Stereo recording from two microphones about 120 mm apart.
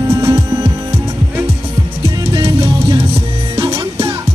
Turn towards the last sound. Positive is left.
turn(degrees=-45)  # may be behind; listen again after turning